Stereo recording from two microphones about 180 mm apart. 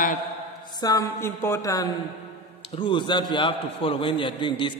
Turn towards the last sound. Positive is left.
turn(degrees=25)  # may be behind; listen again after turning